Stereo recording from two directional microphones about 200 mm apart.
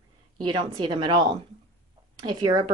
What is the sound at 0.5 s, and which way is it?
Speech, 25° right (ahead or behind).